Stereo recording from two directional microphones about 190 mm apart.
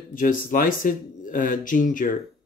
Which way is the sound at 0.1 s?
45° left (ahead or behind).